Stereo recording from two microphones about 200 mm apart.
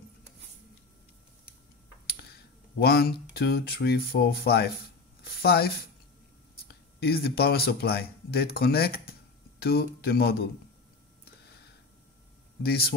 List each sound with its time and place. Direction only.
2.8 s speech: 50° left (ahead or behind)
5.2 s a sound: 50° left (ahead or behind)
6.7 s speech: 50° left (ahead or behind)
12.6 s speech: 50° left (ahead or behind)